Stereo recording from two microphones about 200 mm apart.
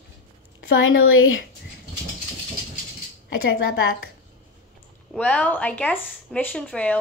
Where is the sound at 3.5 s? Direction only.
55° left (ahead or behind).